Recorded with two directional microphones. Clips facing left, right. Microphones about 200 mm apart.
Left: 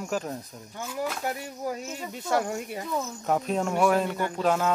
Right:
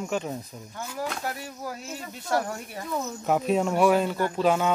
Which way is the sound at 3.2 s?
5° right (ahead or behind).